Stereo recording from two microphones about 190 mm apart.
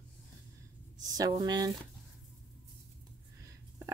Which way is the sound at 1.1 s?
20° right (ahead or behind).